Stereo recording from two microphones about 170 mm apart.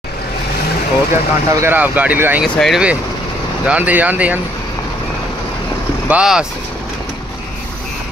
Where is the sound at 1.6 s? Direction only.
10° right (ahead or behind).